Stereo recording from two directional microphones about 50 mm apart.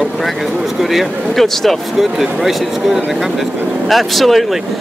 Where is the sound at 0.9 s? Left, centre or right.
Centre.